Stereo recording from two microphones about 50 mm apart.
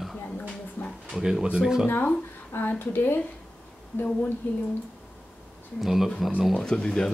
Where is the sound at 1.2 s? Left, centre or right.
Centre.